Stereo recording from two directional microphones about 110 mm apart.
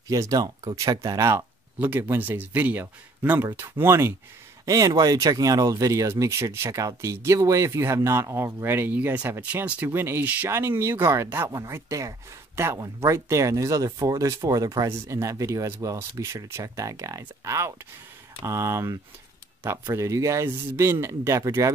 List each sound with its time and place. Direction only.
0.1 s speech: 30° right (ahead or behind)
1.8 s speech: 20° right (ahead or behind)